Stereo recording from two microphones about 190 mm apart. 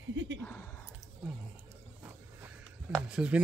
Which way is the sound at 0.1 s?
80° right.